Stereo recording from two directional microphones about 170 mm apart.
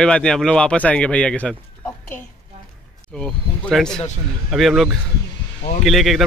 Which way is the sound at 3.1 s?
5° left (ahead or behind).